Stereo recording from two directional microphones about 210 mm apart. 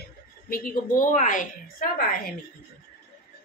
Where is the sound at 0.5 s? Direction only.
40° left (ahead or behind).